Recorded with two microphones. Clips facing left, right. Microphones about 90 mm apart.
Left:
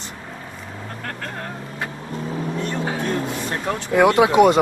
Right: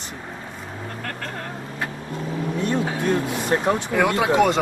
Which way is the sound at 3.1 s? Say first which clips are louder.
Right 3 dB; 20° right (ahead or behind).